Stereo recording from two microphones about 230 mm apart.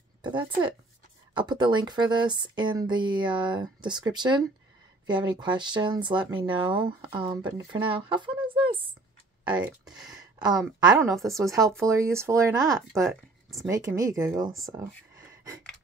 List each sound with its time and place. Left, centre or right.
0.2 s speech: centre
9.5 s speech: centre
10.1 s a sound: centre
10.8 s speech: centre
13.0 s a sound: centre
13.7 s speech: centre
14.7 s whispering: centre